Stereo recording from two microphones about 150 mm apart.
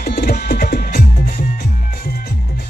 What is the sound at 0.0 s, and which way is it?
Music, 90° left.